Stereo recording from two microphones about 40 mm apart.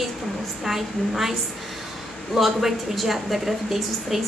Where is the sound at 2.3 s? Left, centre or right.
Centre.